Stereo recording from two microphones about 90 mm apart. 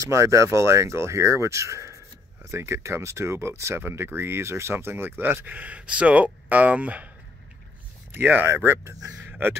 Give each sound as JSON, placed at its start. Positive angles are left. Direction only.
{"t": 0.0, "sound": "speech", "side_deg": -35}
{"t": 8.1, "sound": "speech", "side_deg": -20}
{"t": 9.2, "sound": "a sound", "side_deg": -15}